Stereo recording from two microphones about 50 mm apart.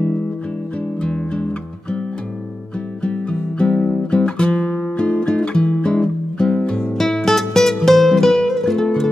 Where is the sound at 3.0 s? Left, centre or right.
Centre.